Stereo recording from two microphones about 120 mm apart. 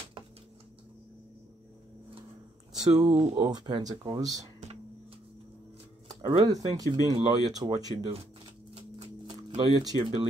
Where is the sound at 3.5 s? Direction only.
35° right (ahead or behind).